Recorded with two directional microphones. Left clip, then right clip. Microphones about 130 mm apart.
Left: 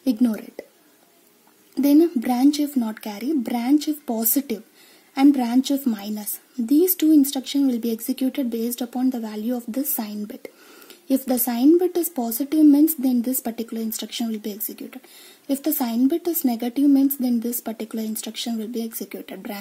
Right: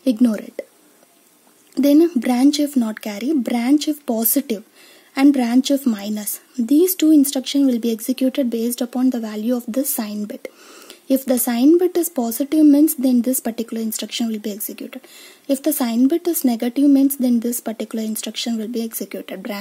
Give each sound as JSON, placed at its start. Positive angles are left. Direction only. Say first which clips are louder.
{"t": 0.0, "sound": "speech", "louder": "right 4 dB", "side_deg": -25}
{"t": 1.8, "sound": "a woman's voice", "louder": "right 3 dB", "side_deg": -20}